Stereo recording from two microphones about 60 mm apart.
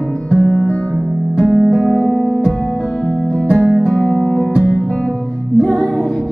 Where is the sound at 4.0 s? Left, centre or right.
Centre.